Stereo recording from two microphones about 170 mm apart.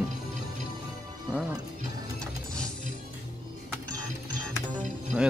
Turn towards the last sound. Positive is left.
turn(degrees=-5)  # may be behind; listen again after turning